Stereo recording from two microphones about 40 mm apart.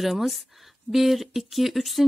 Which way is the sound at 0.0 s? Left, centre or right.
Centre.